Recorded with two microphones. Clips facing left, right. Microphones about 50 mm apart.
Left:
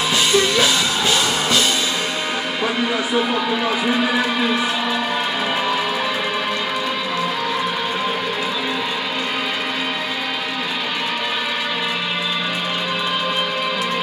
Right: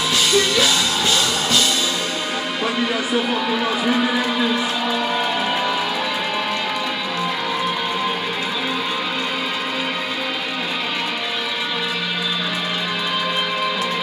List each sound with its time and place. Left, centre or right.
0.1 s music: centre
3.4 s a man's voice: centre